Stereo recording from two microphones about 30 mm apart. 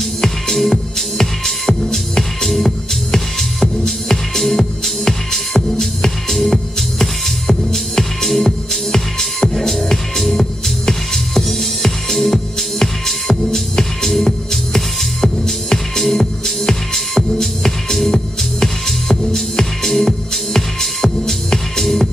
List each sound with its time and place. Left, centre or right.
0.2 s music: centre
16.0 s music: centre